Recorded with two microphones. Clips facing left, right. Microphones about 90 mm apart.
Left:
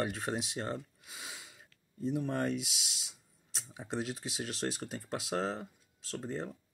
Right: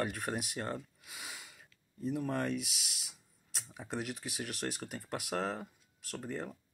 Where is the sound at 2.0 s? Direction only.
25° left (ahead or behind).